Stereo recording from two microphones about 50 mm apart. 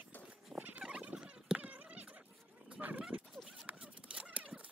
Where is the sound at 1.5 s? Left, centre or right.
Right.